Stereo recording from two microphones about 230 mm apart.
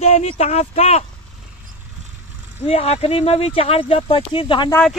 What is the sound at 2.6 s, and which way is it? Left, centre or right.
Speech, left.